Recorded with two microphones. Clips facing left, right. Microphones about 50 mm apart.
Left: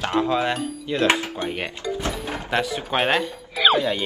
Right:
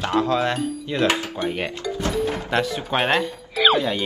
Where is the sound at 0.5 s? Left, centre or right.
Centre.